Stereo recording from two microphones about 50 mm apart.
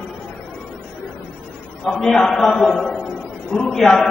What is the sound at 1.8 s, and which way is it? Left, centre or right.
A man's voice, centre.